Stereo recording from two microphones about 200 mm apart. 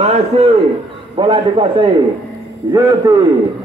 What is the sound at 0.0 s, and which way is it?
A man's voice, 35° right (ahead or behind).